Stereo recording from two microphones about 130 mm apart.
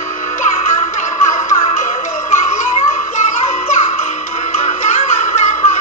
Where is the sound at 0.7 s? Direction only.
70° left (ahead or behind).